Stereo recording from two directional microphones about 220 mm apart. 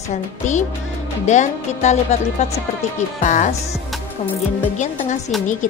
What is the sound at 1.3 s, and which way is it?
Speech, 30° left (ahead or behind).